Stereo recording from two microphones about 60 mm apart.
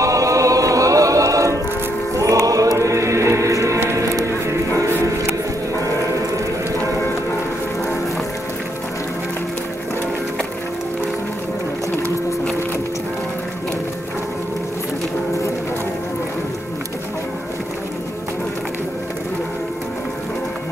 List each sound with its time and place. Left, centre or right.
0.0 s choir: right
2.1 s choir: right
3.9 s music: right